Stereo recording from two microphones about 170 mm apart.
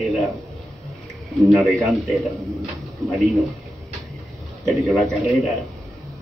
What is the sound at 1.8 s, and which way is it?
Speech, centre (ahead or behind).